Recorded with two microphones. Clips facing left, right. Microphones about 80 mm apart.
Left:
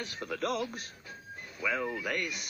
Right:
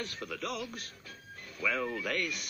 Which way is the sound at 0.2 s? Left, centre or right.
Left.